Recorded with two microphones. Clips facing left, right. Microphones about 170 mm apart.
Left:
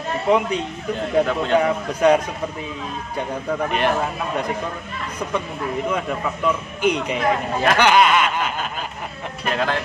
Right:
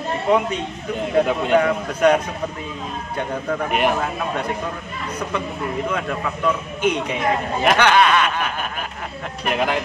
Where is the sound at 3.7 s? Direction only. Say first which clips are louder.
Right 2 dB; 10° right (ahead or behind).